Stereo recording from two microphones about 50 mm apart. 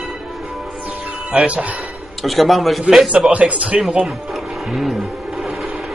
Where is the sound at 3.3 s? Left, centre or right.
Right.